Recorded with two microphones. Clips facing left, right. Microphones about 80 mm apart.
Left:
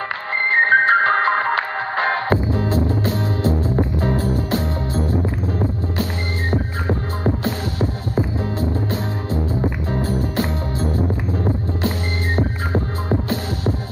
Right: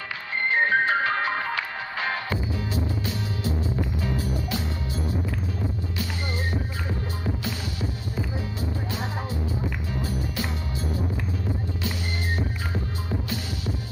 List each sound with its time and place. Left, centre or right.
0.5 s music: left